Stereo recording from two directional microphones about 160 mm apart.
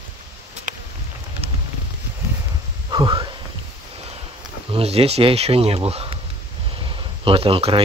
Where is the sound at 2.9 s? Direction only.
30° right (ahead or behind).